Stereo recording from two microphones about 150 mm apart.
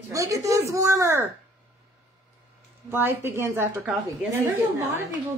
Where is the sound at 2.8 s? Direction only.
15° right (ahead or behind).